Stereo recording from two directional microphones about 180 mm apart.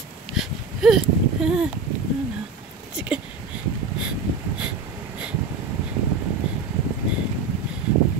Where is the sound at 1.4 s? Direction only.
5° right (ahead or behind).